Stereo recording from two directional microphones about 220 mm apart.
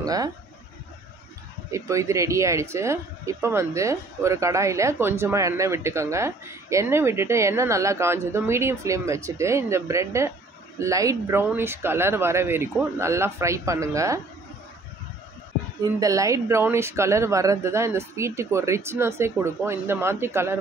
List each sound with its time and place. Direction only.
0.0 s speech: 15° right (ahead or behind)
1.7 s speech: 15° right (ahead or behind)
16.0 s speech: 15° right (ahead or behind)